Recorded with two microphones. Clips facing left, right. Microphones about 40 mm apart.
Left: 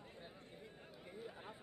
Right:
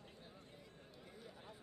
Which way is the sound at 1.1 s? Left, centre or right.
Left.